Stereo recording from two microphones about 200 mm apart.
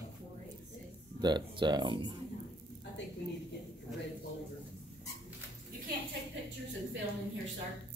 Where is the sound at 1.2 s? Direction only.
20° right (ahead or behind).